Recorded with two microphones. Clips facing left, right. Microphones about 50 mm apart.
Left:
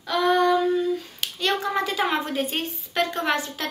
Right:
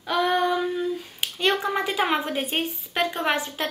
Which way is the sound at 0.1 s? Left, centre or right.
Centre.